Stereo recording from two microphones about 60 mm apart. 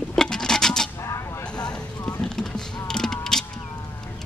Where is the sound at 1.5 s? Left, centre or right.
Centre.